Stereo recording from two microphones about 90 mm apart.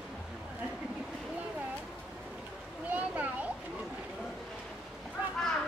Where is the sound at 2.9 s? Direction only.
15° right (ahead or behind).